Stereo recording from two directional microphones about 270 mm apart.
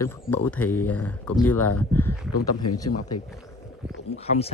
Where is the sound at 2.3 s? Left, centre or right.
Left.